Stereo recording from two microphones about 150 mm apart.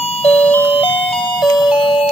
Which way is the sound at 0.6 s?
40° left (ahead or behind).